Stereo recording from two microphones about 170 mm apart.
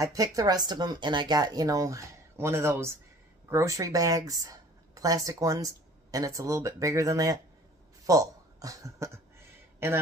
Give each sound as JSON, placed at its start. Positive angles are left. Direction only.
{"t": 0.0, "sound": "speech", "side_deg": -20}